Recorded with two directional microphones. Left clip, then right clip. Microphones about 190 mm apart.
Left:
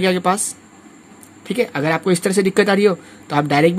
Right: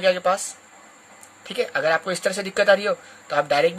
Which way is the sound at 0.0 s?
35° left (ahead or behind).